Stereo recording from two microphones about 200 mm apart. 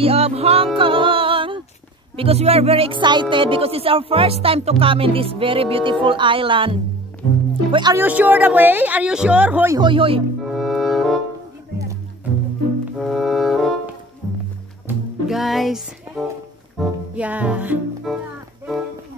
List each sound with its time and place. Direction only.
0.0 s music: 30° right (ahead or behind)
2.1 s speech: 30° right (ahead or behind)
8.0 s speech: 10° right (ahead or behind)
9.8 s speech: 25° right (ahead or behind)
10.4 s music: centre (ahead or behind)
13.0 s music: centre (ahead or behind)
14.9 s music: centre (ahead or behind)